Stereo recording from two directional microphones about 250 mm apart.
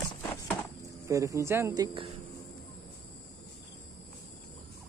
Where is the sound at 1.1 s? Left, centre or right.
Centre.